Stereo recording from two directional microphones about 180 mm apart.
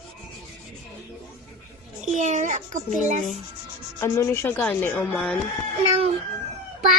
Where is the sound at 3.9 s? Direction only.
15° left (ahead or behind).